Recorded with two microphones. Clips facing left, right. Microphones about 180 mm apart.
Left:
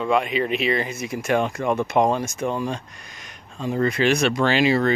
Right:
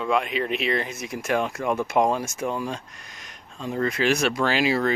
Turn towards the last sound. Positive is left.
turn(degrees=-5)  # may be behind; listen again after turning